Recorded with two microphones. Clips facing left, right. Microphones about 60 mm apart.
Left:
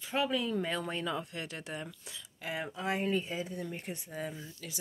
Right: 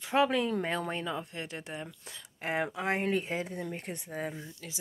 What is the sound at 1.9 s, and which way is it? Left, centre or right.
Speech, right.